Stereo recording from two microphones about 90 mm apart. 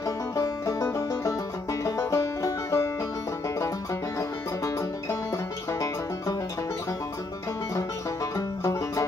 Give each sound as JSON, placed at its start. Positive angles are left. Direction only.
{"t": 0.0, "sound": "music", "side_deg": 35}
{"t": 4.2, "sound": "music", "side_deg": 35}
{"t": 8.4, "sound": "music", "side_deg": 35}